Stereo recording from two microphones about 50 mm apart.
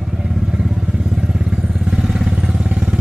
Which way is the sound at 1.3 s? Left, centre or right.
Centre.